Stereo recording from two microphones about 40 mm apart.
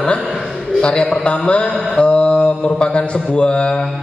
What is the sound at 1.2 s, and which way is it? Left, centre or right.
Mantra, left.